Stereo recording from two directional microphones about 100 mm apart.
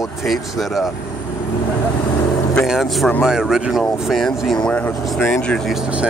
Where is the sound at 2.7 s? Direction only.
Centre (ahead or behind).